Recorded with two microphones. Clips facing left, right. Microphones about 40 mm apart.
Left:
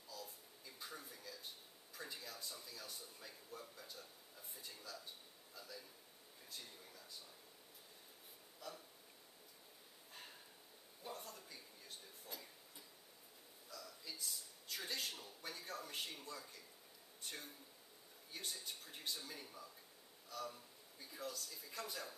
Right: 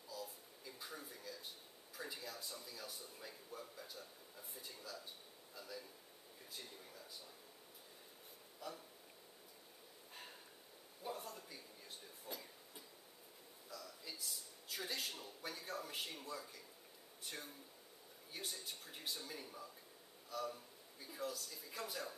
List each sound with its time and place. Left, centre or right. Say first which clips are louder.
0.1 s babbling: right 4 dB; centre
2.0 s a man's voice: right 2 dB; centre
8.5 s speech: right 3 dB; centre
11.1 s a sound: right 4 dB; centre
18.3 s a man's voice: right 1 dB; centre